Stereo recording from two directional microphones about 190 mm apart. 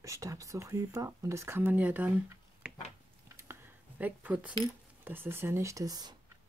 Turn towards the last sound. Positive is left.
turn(degrees=-20)  # may be behind; listen again after turning